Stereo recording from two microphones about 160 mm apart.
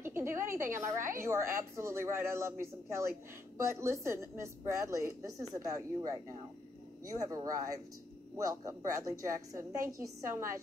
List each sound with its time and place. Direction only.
0.0 s a woman's voice: 15° right (ahead or behind)